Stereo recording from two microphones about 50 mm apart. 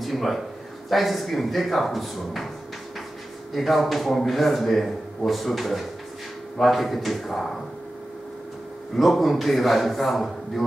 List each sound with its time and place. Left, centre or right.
0.0 s a man's voice: centre
3.5 s speech: centre
8.9 s speech: centre